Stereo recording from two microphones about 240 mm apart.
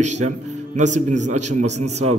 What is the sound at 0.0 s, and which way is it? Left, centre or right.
Speech, right.